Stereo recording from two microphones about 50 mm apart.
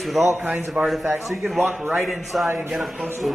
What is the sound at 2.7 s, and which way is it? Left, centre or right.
Speech, centre.